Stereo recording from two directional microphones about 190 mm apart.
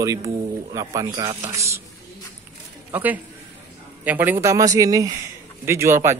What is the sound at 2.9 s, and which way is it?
Speech, 10° right (ahead or behind).